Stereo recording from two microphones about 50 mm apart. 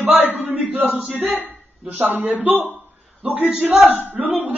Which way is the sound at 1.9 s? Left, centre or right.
Right.